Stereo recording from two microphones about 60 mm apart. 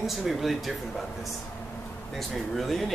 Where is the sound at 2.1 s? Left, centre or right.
Centre.